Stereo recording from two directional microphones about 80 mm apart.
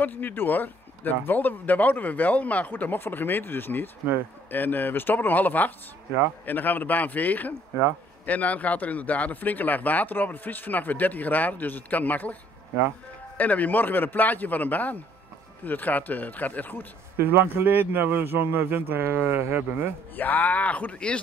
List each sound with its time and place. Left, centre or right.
0.0 s speech: left
13.4 s speech: centre
17.3 s speech: right
20.2 s speech: left